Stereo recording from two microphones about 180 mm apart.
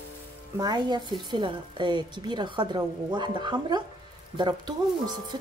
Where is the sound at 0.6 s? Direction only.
25° right (ahead or behind).